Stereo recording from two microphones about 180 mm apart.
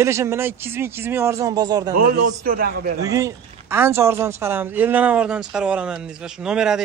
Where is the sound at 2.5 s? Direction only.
55° right (ahead or behind).